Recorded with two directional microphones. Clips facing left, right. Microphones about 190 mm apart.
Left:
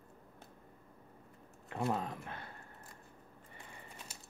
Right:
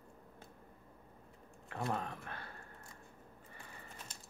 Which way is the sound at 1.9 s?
20° left (ahead or behind).